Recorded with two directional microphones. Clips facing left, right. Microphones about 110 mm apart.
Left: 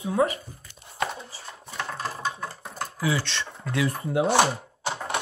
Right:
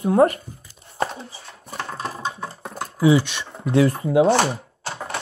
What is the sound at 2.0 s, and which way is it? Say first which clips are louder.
Computer keyboard: right 2 dB; 20° right (ahead or behind).